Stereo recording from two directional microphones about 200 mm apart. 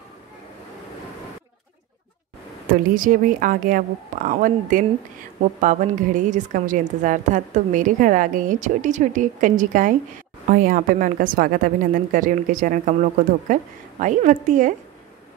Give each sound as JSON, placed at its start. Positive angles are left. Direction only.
{"t": 2.7, "sound": "a woman's voice", "side_deg": -45}